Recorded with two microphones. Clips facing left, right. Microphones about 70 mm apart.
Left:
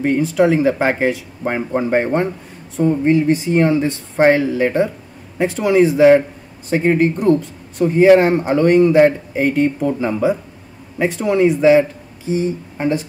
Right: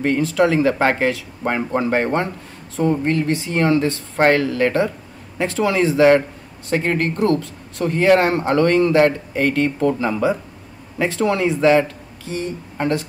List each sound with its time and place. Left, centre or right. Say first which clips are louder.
0.0 s speech: left 2 dB; centre